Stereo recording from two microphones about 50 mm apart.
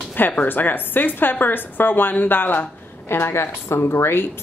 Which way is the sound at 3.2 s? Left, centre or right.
Left.